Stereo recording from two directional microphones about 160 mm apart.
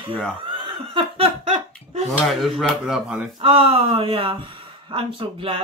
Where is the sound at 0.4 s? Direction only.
30° right (ahead or behind).